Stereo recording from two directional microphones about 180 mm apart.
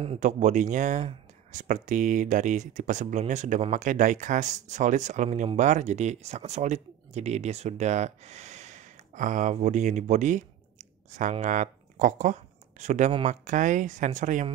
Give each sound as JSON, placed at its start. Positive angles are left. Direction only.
{"t": 0.0, "sound": "speech", "side_deg": -40}